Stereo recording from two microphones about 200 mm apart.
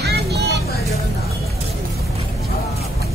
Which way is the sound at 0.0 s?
55° right (ahead or behind).